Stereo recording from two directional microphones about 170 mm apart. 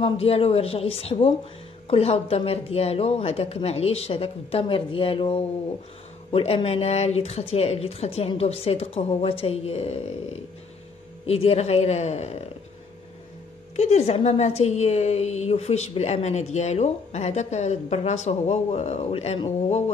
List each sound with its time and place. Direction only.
0.0 s a woman's voice: 35° left (ahead or behind)
13.7 s a woman's voice: 40° left (ahead or behind)